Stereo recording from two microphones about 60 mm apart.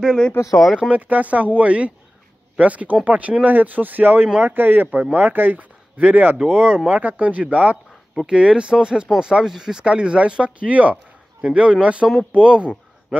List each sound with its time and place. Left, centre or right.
0.0 s speech: centre
0.9 s a man's voice: right